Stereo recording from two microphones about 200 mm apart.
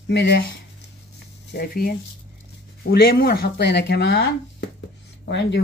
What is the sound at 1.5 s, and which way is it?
Speech, 50° left (ahead or behind).